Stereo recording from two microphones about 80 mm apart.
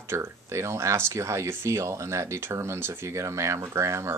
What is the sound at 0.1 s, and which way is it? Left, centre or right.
Speech, right.